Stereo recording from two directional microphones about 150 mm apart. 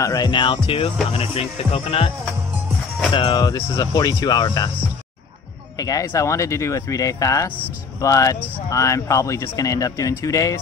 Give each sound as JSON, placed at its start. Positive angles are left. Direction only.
{"t": 0.0, "sound": "speech", "side_deg": 25}
{"t": 5.8, "sound": "speech", "side_deg": 25}